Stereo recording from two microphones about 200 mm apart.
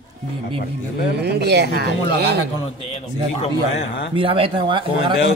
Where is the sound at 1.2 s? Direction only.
55° right (ahead or behind).